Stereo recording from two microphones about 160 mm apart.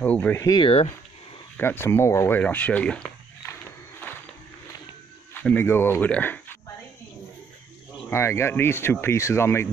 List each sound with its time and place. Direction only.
0.0 s speech: 10° left (ahead or behind)
0.6 s speech: 35° left (ahead or behind)
1.6 s speech: 15° left (ahead or behind)
5.3 s speech: 10° left (ahead or behind)
8.1 s speech: 15° left (ahead or behind)